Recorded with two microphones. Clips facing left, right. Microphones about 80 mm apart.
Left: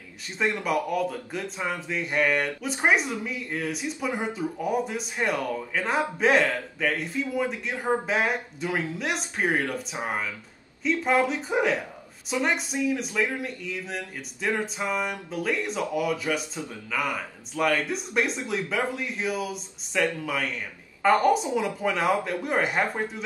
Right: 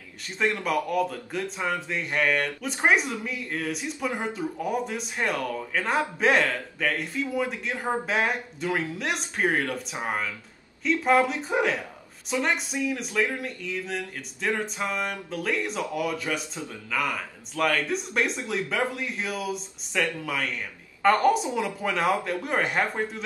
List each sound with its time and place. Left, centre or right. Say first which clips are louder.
0.4 s a man's voice: right 1 dB; centre
0.7 s speech: even; centre
10.8 s a man's voice: right 2 dB; centre
16.3 s a man's voice: left 2 dB; centre
16.9 s speech: even; centre
21.0 s speech: even; centre